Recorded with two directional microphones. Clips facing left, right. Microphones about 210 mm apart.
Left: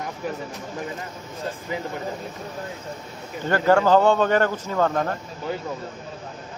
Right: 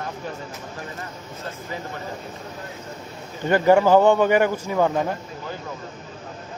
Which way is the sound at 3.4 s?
15° right (ahead or behind).